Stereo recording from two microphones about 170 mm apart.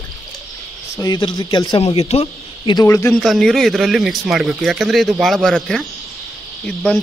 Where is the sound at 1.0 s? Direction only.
25° left (ahead or behind).